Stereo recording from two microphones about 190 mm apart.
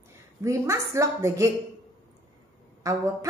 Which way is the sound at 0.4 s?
15° right (ahead or behind).